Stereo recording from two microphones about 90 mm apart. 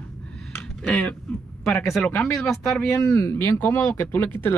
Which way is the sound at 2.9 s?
35° left (ahead or behind).